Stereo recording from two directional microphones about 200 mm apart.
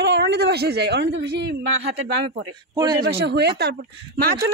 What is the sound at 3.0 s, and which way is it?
Speech, 55° right (ahead or behind).